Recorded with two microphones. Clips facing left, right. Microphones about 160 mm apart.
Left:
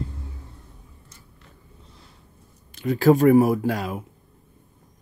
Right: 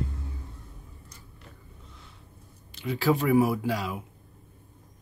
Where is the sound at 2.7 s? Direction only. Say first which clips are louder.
Left 8 dB; 45° left (ahead or behind).